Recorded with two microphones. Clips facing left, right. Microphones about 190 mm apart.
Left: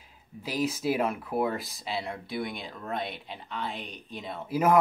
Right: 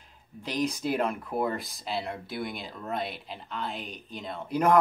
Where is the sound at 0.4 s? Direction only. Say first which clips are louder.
Even; 5° left (ahead or behind).